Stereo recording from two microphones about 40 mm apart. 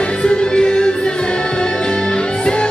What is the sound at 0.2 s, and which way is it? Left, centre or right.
Music, centre.